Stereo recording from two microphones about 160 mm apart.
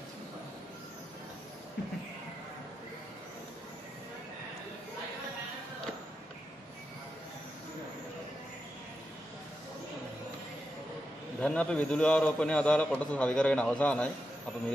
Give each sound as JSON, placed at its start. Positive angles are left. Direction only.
{"t": 11.4, "sound": "a man's voice", "side_deg": 5}